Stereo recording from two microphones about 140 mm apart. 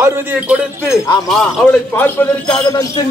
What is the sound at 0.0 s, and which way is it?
Speech, 15° right (ahead or behind).